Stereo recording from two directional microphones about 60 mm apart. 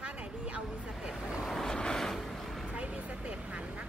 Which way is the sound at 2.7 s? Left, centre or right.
Right.